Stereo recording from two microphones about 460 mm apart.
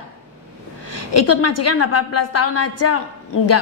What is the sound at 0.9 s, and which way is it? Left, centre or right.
A woman's voice, left.